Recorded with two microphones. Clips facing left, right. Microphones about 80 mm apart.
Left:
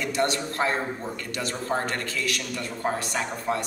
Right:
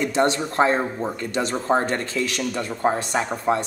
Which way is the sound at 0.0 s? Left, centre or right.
Right.